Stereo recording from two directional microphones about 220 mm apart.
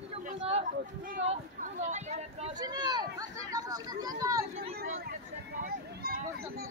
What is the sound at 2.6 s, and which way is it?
Speech, 20° right (ahead or behind).